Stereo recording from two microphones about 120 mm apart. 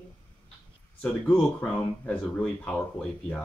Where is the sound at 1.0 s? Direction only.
10° left (ahead or behind).